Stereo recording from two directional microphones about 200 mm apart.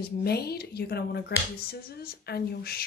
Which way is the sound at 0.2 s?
50° left (ahead or behind).